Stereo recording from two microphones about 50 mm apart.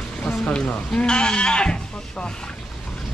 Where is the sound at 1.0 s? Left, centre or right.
Centre.